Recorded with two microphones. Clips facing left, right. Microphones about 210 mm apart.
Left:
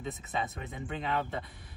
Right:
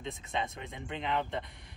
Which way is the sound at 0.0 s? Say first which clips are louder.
Left 1 dB; 5° left (ahead or behind).